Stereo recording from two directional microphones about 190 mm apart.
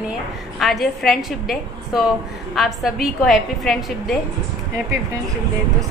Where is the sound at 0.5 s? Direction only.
Centre (ahead or behind).